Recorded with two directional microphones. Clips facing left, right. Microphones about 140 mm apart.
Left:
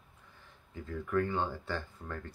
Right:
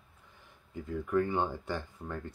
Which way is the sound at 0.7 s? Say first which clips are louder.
Right 3 dB; 15° right (ahead or behind).